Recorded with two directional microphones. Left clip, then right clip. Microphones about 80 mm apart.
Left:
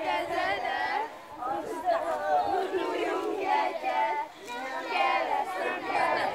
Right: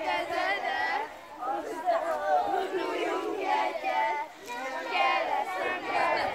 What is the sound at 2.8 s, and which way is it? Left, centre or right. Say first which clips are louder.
Battle cry: left 1 dB; right.